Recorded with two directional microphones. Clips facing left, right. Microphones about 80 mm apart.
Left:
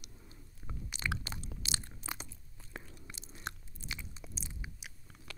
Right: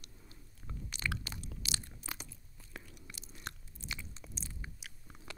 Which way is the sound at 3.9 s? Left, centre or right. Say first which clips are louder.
Even; centre.